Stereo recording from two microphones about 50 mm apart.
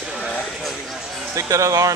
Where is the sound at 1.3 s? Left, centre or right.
Right.